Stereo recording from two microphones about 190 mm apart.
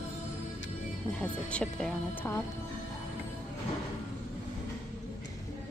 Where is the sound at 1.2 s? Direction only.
5° left (ahead or behind).